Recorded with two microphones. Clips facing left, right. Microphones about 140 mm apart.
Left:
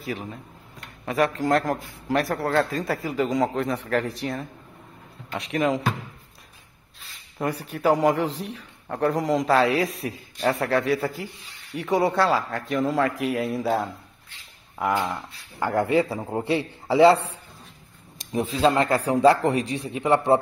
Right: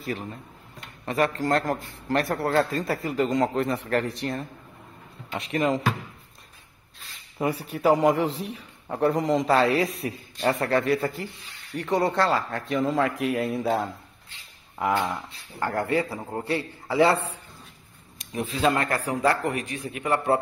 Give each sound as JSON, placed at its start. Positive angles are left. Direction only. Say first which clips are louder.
{"t": 0.0, "sound": "a man's voice", "louder": "even", "side_deg": 0}
{"t": 7.3, "sound": "a man's voice", "louder": "right 1 dB", "side_deg": -5}
{"t": 15.6, "sound": "a man's voice", "louder": "left 4 dB", "side_deg": 15}
{"t": 18.6, "sound": "a man's voice", "louder": "left 3 dB", "side_deg": 25}